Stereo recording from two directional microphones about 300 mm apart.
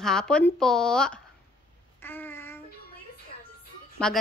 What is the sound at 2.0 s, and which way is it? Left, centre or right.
Child singing, centre.